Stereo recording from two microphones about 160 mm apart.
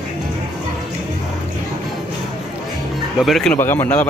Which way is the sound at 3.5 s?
15° left (ahead or behind).